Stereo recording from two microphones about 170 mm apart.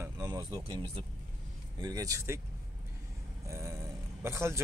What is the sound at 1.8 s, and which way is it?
Speech, 20° right (ahead or behind).